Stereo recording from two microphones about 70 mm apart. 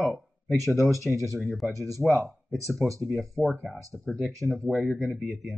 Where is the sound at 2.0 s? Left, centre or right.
Centre.